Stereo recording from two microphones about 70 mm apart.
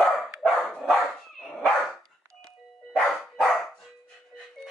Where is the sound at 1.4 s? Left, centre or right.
Centre.